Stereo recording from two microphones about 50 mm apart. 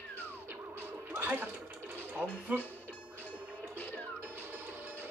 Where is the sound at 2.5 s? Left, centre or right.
Right.